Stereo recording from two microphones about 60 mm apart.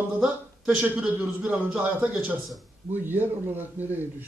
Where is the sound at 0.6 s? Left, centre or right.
Right.